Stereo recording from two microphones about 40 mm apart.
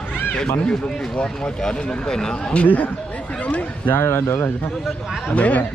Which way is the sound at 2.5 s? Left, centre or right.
Left.